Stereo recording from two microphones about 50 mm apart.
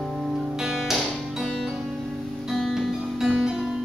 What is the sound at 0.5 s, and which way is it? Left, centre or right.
Music, centre.